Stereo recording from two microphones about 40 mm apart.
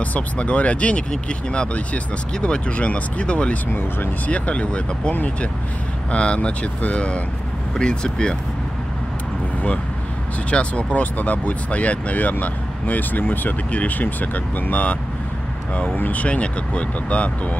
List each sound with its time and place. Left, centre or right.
0.0 s speech: left
2.4 s speech: left
6.1 s speech: left
7.7 s speech: centre
10.5 s speech: left
11.0 s speech: left
13.7 s speech: left
16.0 s speech: left